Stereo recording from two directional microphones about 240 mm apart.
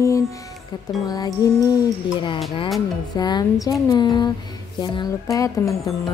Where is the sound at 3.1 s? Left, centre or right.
Centre.